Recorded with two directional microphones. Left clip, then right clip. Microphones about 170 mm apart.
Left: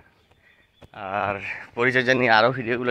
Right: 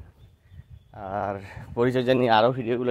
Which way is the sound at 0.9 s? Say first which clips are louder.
Left 4 dB; 20° right (ahead or behind).